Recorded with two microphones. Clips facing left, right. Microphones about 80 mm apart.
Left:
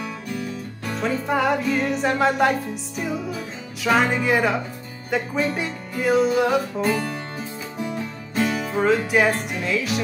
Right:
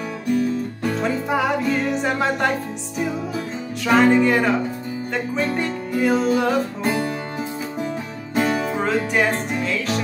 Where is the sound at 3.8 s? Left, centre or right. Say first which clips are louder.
Right 4 dB; centre.